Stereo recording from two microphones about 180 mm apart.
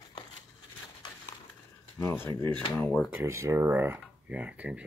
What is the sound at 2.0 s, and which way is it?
Speech, 10° left (ahead or behind).